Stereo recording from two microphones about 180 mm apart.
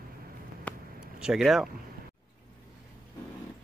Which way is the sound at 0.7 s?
5° left (ahead or behind).